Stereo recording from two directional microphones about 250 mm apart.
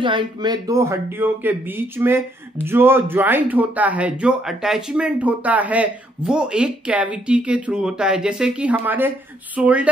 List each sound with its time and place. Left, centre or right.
0.0 s speech: centre